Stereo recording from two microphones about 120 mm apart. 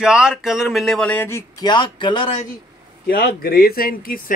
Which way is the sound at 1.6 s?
40° left (ahead or behind).